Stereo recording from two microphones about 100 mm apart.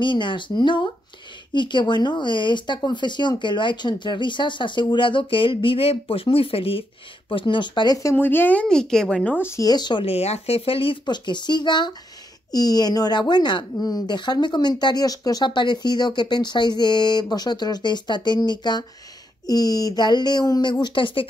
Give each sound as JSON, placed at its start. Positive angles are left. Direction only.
{"t": 0.0, "sound": "speech", "side_deg": 55}
{"t": 7.2, "sound": "speech", "side_deg": 55}
{"t": 8.0, "sound": "speech", "side_deg": 25}
{"t": 9.6, "sound": "speech", "side_deg": 45}
{"t": 10.0, "sound": "speech", "side_deg": 85}